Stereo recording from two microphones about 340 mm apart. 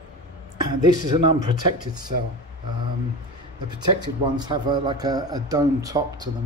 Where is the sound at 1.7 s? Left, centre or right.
Centre.